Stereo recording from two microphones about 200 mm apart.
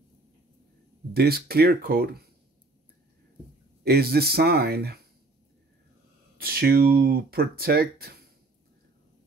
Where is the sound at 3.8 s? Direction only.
50° right (ahead or behind).